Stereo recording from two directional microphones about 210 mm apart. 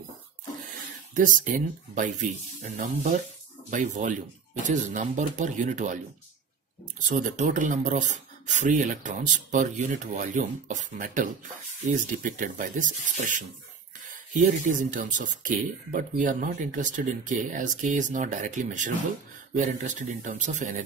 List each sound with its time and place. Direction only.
1.1 s speech: 40° right (ahead or behind)
2.8 s speech: 40° right (ahead or behind)
7.0 s speech: 35° right (ahead or behind)